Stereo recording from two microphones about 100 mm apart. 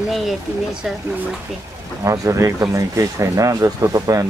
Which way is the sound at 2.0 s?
30° right (ahead or behind).